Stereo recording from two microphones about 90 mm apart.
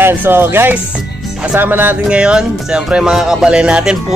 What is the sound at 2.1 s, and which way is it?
Speech, 10° right (ahead or behind).